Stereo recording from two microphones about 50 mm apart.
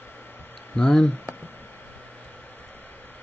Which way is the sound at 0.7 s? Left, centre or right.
Centre.